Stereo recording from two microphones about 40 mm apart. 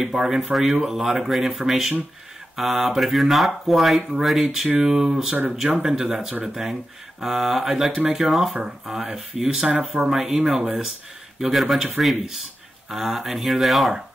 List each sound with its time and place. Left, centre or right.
0.0 s speech: centre
9.7 s speech: right
10.0 s speech: centre